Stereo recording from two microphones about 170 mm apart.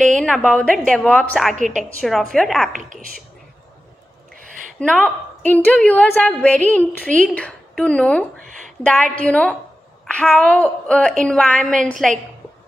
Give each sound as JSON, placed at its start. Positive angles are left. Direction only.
{"t": 0.0, "sound": "a woman's voice", "side_deg": 5}
{"t": 1.5, "sound": "a woman's voice", "side_deg": -45}
{"t": 2.0, "sound": "a woman's voice", "side_deg": 0}
{"t": 2.7, "sound": "a woman's voice", "side_deg": -50}
{"t": 4.7, "sound": "a woman's voice", "side_deg": 5}